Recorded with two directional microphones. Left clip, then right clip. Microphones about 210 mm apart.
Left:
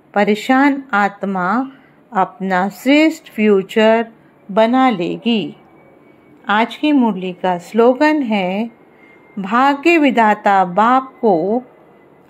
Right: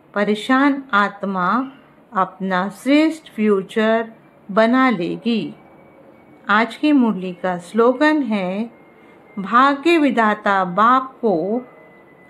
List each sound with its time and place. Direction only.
0.5 s a woman's voice: 15° left (ahead or behind)
4.6 s a woman's voice: centre (ahead or behind)